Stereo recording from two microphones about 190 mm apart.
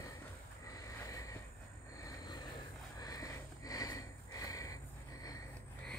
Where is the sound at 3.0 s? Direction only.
20° left (ahead or behind).